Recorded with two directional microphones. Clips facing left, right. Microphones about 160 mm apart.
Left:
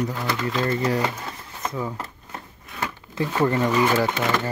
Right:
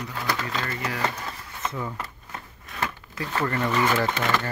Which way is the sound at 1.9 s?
25° left (ahead or behind).